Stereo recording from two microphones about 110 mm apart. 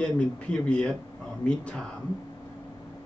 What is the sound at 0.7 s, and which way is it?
Speech, 10° left (ahead or behind).